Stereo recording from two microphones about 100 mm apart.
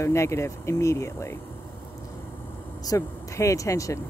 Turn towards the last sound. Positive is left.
turn(degrees=30)  # may be behind; listen again after turning